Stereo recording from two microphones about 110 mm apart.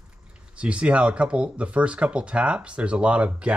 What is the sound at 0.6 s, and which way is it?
Speech, 10° right (ahead or behind).